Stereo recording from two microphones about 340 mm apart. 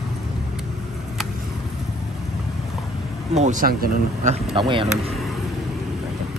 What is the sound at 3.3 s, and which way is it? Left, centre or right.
Speech, right.